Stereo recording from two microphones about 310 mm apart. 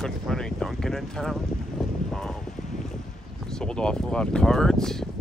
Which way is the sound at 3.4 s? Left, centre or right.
Centre.